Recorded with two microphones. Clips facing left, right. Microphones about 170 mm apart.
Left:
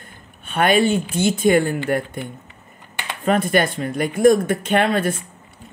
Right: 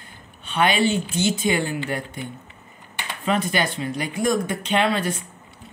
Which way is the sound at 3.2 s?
55° left (ahead or behind).